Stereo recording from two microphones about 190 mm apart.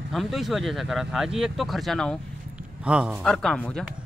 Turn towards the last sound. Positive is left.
turn(degrees=5)  # may be behind; listen again after turning